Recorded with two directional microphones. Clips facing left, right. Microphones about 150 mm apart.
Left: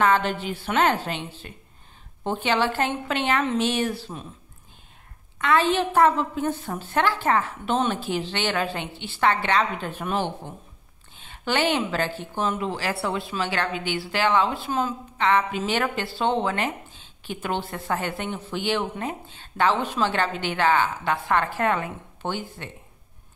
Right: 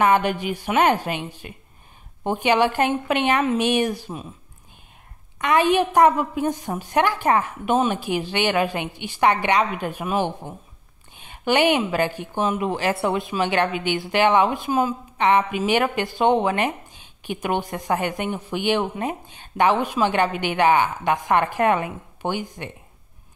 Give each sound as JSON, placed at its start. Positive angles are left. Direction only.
{"t": 0.0, "sound": "a woman's voice", "side_deg": -15}
{"t": 5.4, "sound": "a woman's voice", "side_deg": -15}